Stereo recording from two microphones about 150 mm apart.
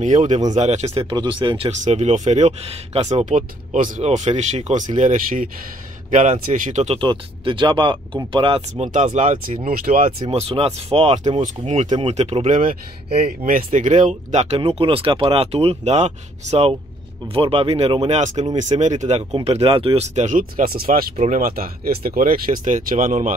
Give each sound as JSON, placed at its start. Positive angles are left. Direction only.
{"t": 0.0, "sound": "speech", "side_deg": -50}
{"t": 1.1, "sound": "speech", "side_deg": -30}
{"t": 1.9, "sound": "speech", "side_deg": -50}
{"t": 4.9, "sound": "speech", "side_deg": -60}
{"t": 7.0, "sound": "speech", "side_deg": -35}
{"t": 10.3, "sound": "speech", "side_deg": -40}
{"t": 13.4, "sound": "speech", "side_deg": -65}
{"t": 13.7, "sound": "speech", "side_deg": -55}
{"t": 19.3, "sound": "speech", "side_deg": -40}
{"t": 21.2, "sound": "speech", "side_deg": -50}
{"t": 21.5, "sound": "speech", "side_deg": -75}